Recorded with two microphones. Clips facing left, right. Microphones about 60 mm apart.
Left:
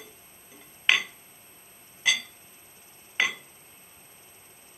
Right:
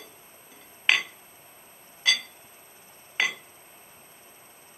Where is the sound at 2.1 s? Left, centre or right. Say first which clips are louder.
Even; centre.